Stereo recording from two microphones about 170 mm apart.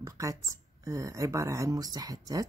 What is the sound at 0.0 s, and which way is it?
A woman's voice, 20° right (ahead or behind).